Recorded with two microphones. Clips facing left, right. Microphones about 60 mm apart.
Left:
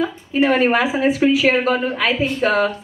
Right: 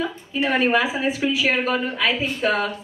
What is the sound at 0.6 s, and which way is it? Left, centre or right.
A woman's voice, left.